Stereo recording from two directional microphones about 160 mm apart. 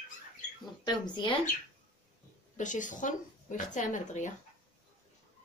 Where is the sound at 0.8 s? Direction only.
30° left (ahead or behind).